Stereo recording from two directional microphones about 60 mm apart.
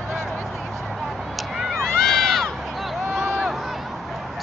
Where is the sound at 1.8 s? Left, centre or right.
Centre.